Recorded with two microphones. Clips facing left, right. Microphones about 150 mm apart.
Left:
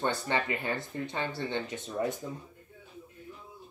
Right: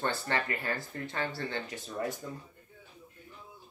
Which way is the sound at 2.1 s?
Centre (ahead or behind).